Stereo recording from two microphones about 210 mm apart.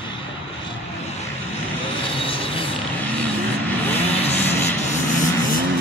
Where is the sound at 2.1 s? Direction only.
25° left (ahead or behind).